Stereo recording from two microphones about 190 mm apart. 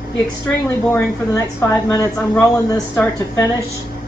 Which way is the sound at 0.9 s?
15° left (ahead or behind).